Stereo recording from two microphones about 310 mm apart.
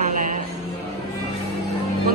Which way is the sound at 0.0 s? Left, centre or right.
Right.